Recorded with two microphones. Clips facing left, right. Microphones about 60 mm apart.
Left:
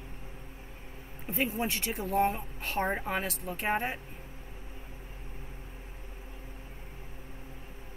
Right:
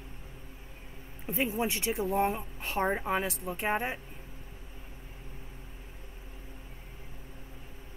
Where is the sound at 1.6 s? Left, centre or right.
Centre.